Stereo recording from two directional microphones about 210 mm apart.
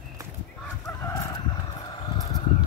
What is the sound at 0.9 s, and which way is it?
Chicken, 10° left (ahead or behind).